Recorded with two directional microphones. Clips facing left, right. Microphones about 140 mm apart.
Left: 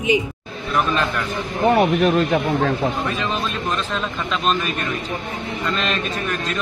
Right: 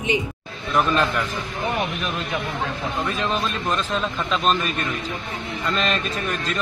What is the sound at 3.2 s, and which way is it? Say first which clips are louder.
A man's voice: even; centre (ahead or behind).